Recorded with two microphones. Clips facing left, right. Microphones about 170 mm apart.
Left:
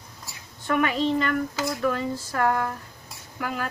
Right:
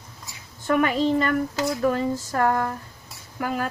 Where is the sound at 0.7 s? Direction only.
40° right (ahead or behind).